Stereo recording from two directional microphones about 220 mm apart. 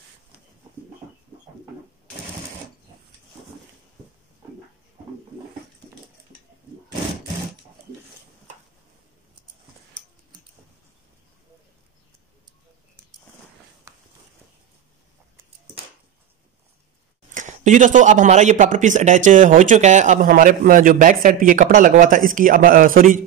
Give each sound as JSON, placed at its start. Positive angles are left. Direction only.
{"t": 17.3, "sound": "speech", "side_deg": -35}